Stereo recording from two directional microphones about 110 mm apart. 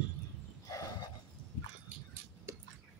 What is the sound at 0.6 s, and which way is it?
Dog, 30° left (ahead or behind).